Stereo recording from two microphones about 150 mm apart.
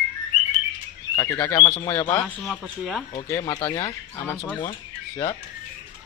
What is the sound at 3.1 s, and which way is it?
Speech, 15° left (ahead or behind).